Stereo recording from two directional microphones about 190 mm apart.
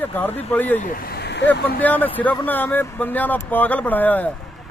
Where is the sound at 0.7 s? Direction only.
50° left (ahead or behind).